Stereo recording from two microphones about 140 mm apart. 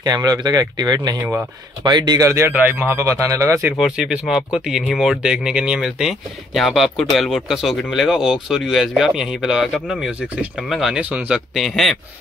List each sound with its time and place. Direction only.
0.0 s speech: 30° right (ahead or behind)
3.8 s speech: 5° right (ahead or behind)